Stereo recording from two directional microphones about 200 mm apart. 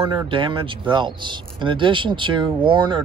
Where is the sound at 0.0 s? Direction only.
25° right (ahead or behind).